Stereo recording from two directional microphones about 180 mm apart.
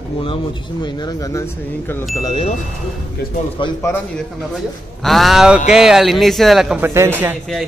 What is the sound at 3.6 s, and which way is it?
Speech, 25° left (ahead or behind).